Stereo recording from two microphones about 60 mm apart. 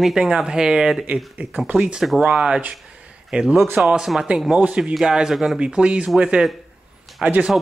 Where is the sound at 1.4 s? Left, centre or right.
Right.